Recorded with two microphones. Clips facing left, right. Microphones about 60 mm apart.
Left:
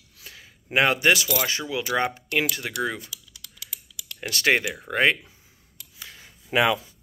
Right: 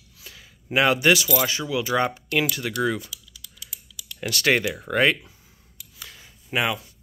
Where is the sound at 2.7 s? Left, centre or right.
Left.